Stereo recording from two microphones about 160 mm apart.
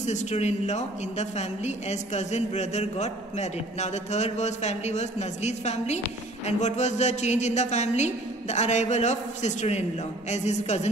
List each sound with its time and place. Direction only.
0.0 s a woman's voice: 45° left (ahead or behind)